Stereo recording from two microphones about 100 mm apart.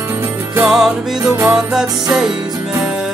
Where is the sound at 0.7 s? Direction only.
5° right (ahead or behind).